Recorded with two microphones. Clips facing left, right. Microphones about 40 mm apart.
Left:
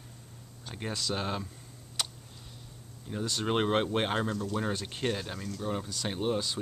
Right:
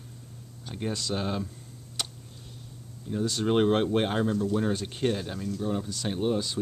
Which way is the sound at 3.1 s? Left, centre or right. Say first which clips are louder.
Right 5 dB; centre.